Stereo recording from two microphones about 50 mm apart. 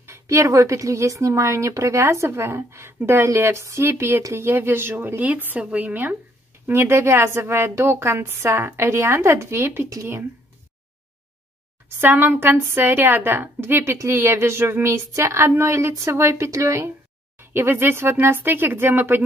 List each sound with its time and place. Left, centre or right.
0.0 s speech: right
5.3 s speech: right
6.7 s speech: right
8.8 s speech: right
12.0 s a woman's voice: right
17.4 s a woman's voice: right